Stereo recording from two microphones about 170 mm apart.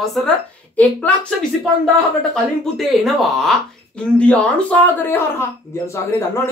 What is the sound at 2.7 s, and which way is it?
Speech, centre (ahead or behind).